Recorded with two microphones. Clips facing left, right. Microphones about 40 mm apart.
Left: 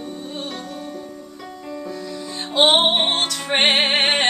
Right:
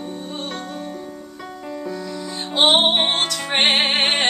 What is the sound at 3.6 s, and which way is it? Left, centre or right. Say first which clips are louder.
Music: left 1 dB; centre.